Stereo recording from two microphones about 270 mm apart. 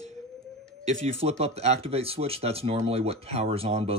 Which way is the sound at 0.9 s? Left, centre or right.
Right.